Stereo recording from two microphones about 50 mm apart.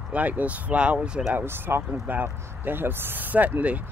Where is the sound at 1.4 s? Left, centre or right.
Right.